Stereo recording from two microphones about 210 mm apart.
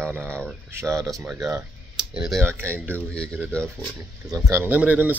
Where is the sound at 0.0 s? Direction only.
5° right (ahead or behind).